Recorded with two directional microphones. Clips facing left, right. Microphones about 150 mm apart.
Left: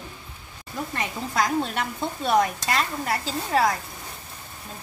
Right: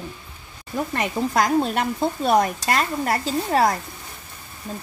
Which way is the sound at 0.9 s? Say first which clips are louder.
Right 5 dB; 55° right (ahead or behind).